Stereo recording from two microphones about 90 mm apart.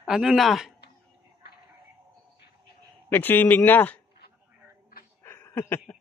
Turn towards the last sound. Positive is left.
turn(degrees=25)  # may be behind; listen again after turning